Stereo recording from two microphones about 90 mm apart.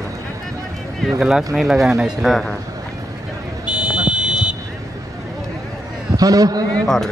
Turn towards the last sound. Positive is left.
turn(degrees=5)  # may be behind; listen again after turning